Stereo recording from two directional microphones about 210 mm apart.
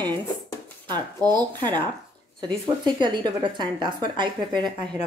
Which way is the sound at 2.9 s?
20° right (ahead or behind).